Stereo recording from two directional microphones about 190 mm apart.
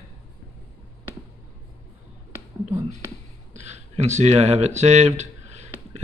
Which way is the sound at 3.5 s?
35° right (ahead or behind).